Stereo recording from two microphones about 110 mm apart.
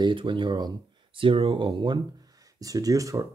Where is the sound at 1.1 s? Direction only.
55° right (ahead or behind).